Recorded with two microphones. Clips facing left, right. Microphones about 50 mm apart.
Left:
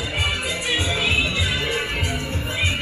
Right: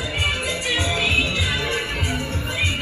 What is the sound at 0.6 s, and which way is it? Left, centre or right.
Music, centre.